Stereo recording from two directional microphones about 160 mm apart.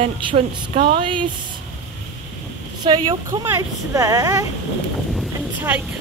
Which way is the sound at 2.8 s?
30° right (ahead or behind).